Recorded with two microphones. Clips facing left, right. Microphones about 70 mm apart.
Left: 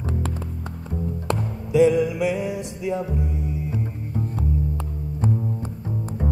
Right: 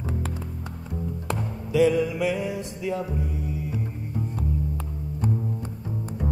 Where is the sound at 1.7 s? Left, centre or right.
Centre.